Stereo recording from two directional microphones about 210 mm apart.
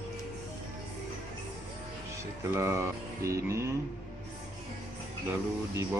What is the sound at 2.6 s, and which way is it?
Music, 15° right (ahead or behind).